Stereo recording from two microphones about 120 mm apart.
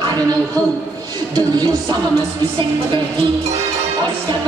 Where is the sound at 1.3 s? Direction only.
35° right (ahead or behind).